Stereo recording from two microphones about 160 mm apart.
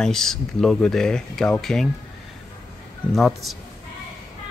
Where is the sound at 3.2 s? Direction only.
Centre (ahead or behind).